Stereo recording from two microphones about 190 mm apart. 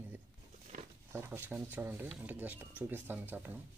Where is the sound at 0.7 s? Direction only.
45° right (ahead or behind).